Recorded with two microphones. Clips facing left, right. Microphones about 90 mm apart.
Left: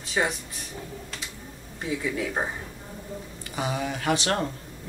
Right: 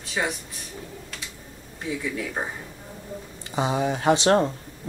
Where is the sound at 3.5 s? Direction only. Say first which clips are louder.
Right 5 dB; 25° right (ahead or behind).